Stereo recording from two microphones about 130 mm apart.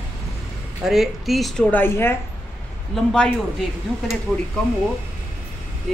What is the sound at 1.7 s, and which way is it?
Speech, 15° left (ahead or behind).